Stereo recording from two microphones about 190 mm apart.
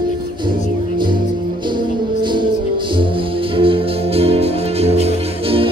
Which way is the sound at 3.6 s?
30° right (ahead or behind).